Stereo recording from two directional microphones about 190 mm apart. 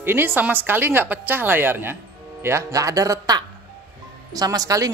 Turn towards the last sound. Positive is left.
turn(degrees=-20)  # may be behind; listen again after turning